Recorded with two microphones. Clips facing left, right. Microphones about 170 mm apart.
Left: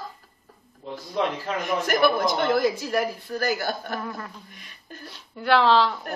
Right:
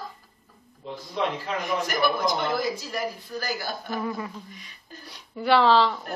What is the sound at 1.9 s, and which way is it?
Speech, 55° left (ahead or behind).